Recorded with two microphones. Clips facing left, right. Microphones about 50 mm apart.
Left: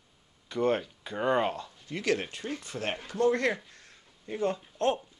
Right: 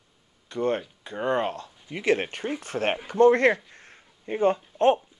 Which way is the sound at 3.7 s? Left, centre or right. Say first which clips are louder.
Right 5 dB; right.